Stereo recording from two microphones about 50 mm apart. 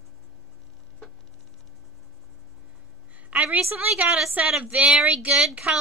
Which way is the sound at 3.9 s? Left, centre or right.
Right.